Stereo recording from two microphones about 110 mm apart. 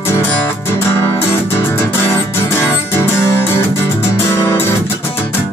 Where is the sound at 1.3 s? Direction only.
25° left (ahead or behind).